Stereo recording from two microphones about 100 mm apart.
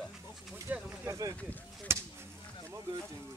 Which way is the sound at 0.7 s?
25° right (ahead or behind).